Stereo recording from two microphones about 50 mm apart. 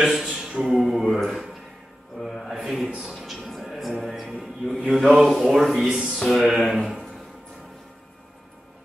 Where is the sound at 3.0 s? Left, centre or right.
Centre.